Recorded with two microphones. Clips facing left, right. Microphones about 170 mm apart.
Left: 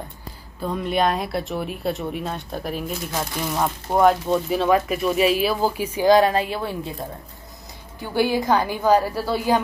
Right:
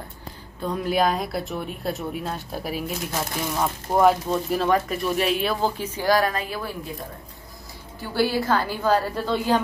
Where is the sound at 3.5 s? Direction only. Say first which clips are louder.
Left 1 dB; 10° left (ahead or behind); by 7.0 s 30° left (ahead or behind).